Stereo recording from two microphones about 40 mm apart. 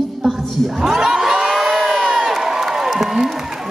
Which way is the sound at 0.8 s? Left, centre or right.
Centre.